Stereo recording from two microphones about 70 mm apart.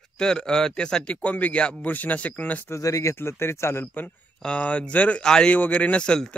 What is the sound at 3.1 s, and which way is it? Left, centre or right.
Speech, left.